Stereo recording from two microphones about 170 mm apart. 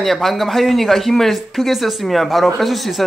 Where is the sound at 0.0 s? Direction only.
Centre (ahead or behind).